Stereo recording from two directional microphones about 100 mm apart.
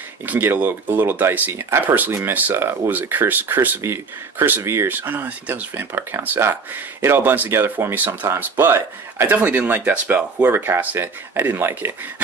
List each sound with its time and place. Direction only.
0.3 s speech: 20° right (ahead or behind)